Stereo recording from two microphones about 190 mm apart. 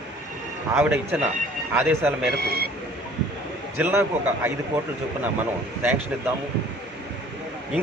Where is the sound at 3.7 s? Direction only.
10° right (ahead or behind).